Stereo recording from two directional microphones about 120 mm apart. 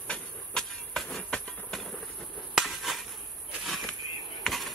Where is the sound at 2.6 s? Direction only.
Centre (ahead or behind).